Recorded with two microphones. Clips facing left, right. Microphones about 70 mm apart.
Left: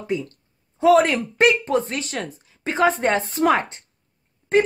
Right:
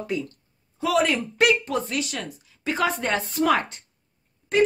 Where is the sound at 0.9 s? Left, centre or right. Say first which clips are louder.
Left 4 dB; left.